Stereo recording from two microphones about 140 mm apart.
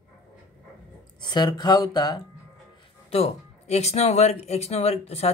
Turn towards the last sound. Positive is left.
turn(degrees=45)  # may be behind; listen again after turning